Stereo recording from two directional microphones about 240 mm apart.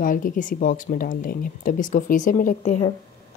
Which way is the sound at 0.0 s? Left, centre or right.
Left.